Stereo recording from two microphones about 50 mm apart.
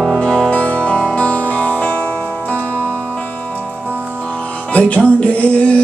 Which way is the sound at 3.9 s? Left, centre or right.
Right.